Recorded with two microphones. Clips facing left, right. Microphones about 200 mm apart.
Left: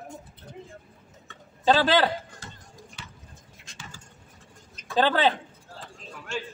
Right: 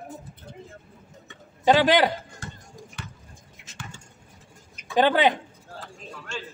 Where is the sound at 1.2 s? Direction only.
15° right (ahead or behind).